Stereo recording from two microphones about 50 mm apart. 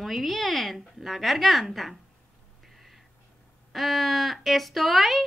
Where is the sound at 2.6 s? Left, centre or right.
Centre.